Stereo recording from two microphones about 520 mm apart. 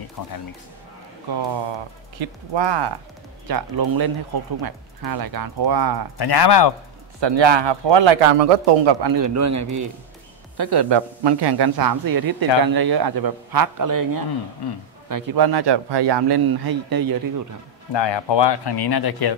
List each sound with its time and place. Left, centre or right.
0.2 s speech: left
2.1 s speech: right
3.4 s speech: right
6.1 s speech: left
7.2 s a man's voice: right
9.0 s a man's voice: right
10.6 s a man's voice: right
14.6 s speech: left
15.0 s speech: right
17.9 s speech: left